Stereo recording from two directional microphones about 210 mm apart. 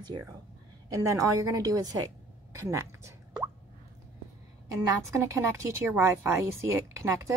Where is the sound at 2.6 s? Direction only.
15° right (ahead or behind).